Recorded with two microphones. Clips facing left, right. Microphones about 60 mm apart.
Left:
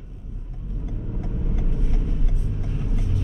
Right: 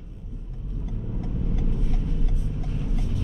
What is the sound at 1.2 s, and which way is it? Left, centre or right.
Vehicle, centre.